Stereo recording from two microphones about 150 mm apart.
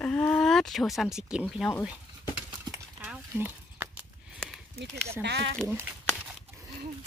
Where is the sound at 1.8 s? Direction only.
5° right (ahead or behind).